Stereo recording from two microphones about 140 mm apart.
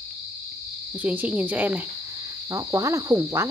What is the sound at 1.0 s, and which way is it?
Speech, 10° right (ahead or behind).